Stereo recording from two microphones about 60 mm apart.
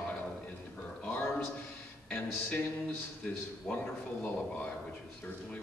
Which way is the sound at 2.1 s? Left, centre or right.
Left.